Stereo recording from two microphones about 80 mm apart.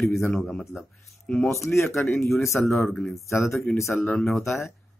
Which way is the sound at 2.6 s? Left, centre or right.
Centre.